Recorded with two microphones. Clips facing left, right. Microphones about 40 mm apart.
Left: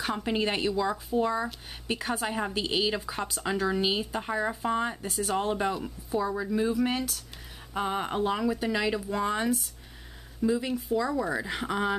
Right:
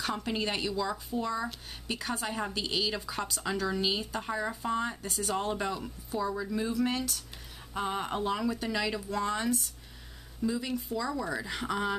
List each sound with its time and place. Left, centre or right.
0.0 s speech: centre